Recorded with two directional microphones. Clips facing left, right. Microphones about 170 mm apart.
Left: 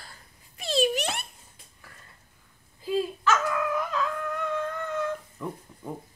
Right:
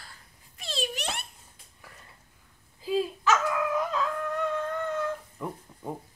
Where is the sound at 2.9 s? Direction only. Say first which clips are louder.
Even; 15° right (ahead or behind).